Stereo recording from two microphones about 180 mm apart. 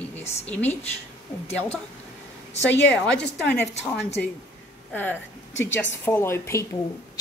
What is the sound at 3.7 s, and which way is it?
Speech, 35° left (ahead or behind).